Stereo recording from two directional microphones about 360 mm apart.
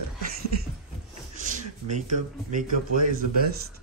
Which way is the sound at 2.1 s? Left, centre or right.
Right.